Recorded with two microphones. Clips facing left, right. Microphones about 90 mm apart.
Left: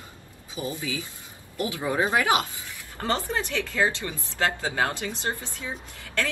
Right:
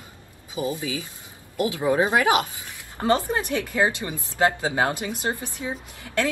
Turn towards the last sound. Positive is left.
turn(degrees=-20)  # may be behind; listen again after turning